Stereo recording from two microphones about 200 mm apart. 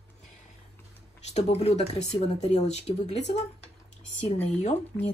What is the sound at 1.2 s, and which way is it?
Speech, 30° left (ahead or behind).